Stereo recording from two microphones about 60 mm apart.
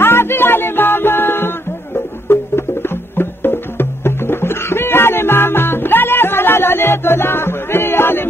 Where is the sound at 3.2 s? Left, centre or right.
Left.